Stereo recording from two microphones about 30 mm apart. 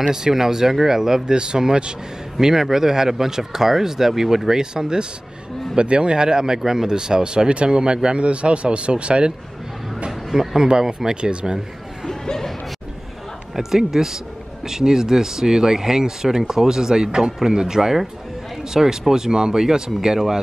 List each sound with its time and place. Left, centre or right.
0.1 s speech: centre
1.3 s speech: right
2.4 s speech: centre
5.8 s speech: right
10.3 s speech: centre
11.1 s speech: right
12.1 s speech: centre
13.6 s speech: centre